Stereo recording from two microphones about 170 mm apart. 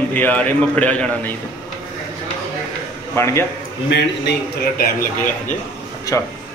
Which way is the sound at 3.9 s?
90° left.